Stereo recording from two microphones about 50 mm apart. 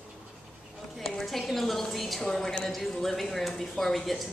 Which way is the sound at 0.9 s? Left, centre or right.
Centre.